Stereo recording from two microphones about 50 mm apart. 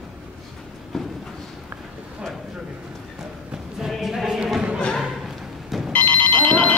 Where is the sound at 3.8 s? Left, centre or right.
Centre.